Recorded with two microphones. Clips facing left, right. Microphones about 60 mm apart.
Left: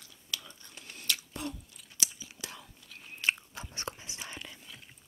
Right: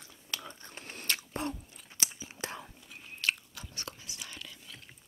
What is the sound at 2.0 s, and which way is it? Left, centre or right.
Whispering, right.